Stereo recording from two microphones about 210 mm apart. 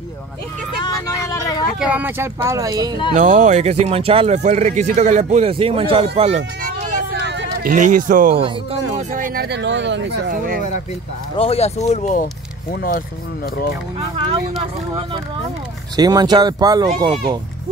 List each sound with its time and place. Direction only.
1.3 s a sound: 15° left (ahead or behind)
1.8 s speech: 5° right (ahead or behind)
3.2 s speech: 35° right (ahead or behind)
7.2 s hubbub: 55° right (ahead or behind)
7.7 s speech: 40° right (ahead or behind); by 10.3 s 55° right (ahead or behind)
11.3 s speech: 30° left (ahead or behind); by 13.0 s 45° left (ahead or behind)
13.9 s speech: 25° right (ahead or behind)
16.0 s speech: 20° right (ahead or behind)